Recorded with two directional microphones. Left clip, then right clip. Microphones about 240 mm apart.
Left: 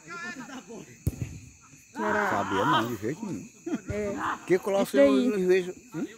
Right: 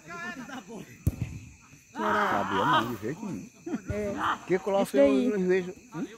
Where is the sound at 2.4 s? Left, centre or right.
Centre.